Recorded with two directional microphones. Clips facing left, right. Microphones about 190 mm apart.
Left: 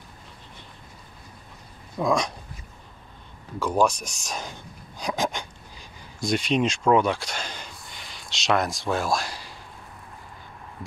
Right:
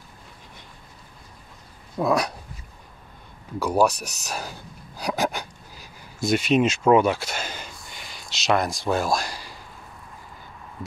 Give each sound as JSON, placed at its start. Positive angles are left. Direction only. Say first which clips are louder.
{"t": 2.0, "sound": "speech", "louder": "right 1 dB", "side_deg": -5}
{"t": 3.5, "sound": "speech", "louder": "right 2 dB", "side_deg": -10}
{"t": 4.3, "sound": "a sound", "louder": "right 1 dB", "side_deg": -5}